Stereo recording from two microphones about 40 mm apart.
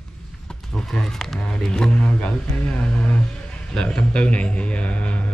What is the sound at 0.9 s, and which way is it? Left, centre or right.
Speech, centre.